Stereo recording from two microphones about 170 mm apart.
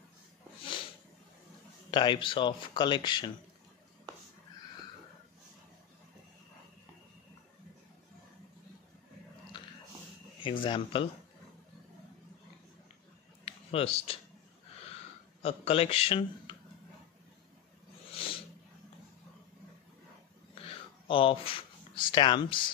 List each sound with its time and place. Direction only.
1.9 s speech: 25° left (ahead or behind)
9.5 s biting: 25° left (ahead or behind)
10.4 s a man's voice: 30° left (ahead or behind)
13.5 s a sound: 35° left (ahead or behind)
15.4 s a man's voice: 35° left (ahead or behind)
18.1 s a sound: 30° left (ahead or behind)
21.1 s a man's voice: 30° left (ahead or behind)